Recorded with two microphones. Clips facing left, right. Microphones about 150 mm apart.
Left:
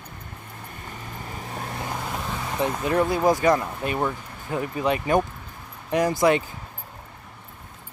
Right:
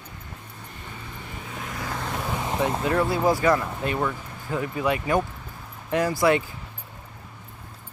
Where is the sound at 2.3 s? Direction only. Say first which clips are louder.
Right 1 dB; 20° right (ahead or behind).